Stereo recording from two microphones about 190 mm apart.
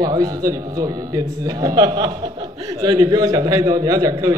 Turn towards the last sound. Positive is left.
turn(degrees=-20)  # may be behind; listen again after turning